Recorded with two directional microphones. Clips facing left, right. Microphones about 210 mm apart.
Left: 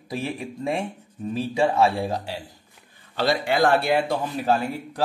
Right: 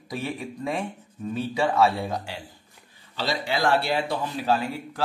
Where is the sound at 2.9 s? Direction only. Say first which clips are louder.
Left 6 dB; 55° left (ahead or behind).